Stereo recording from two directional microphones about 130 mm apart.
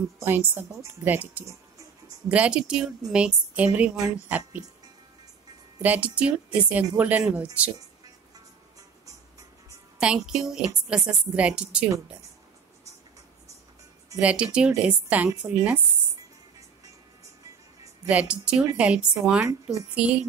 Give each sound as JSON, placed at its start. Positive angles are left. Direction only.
{"t": 0.2, "sound": "speech", "side_deg": -15}
{"t": 5.8, "sound": "speech", "side_deg": -10}
{"t": 9.9, "sound": "a woman's voice", "side_deg": -5}
{"t": 14.2, "sound": "speech", "side_deg": -10}
{"t": 18.0, "sound": "speech", "side_deg": -10}